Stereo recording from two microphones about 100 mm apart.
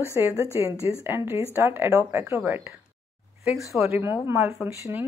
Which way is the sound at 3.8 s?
25° right (ahead or behind).